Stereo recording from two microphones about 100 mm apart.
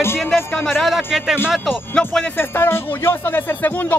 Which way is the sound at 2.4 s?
20° left (ahead or behind).